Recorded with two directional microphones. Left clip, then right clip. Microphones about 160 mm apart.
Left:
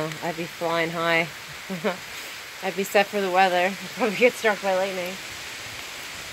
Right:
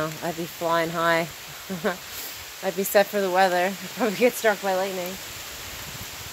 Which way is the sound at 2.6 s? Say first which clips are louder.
Right 1 dB; 15° right (ahead or behind).